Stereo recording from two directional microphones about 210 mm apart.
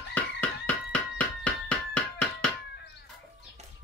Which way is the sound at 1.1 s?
5° left (ahead or behind).